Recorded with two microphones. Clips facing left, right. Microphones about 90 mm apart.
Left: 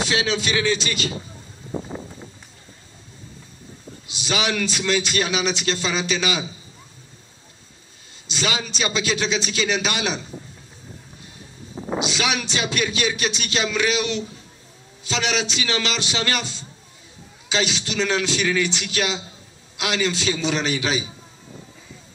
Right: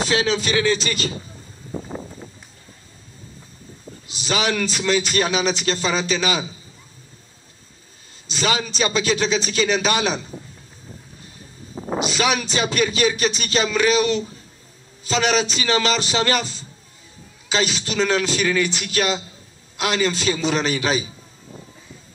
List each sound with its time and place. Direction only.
0.0 s a man's voice: 40° right (ahead or behind)
4.1 s a man's voice: 40° right (ahead or behind)
8.3 s a man's voice: 45° right (ahead or behind)
11.1 s vehicle: 40° right (ahead or behind)
11.9 s a man's voice: 40° right (ahead or behind)